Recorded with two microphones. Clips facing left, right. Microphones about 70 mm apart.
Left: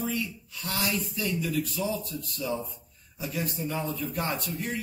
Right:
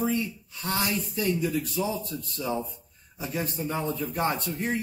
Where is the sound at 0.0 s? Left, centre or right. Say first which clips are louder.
Right 4 dB; right.